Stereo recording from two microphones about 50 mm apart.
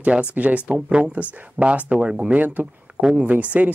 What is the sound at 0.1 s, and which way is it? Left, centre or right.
Speech, right.